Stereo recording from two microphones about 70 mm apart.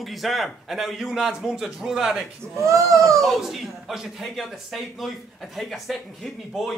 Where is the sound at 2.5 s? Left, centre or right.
Right.